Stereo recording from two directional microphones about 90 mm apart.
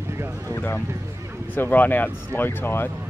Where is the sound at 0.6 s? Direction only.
20° left (ahead or behind).